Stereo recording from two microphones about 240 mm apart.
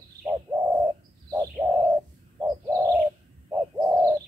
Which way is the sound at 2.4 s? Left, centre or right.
Centre.